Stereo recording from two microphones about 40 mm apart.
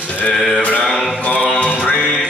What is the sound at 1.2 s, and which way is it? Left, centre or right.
Music, left.